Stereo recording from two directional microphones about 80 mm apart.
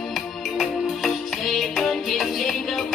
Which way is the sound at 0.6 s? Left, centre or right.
Centre.